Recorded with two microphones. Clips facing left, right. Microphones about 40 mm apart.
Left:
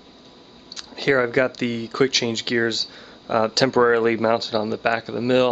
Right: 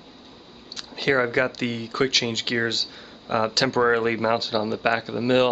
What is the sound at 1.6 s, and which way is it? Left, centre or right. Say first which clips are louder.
Speech: left 3 dB; right.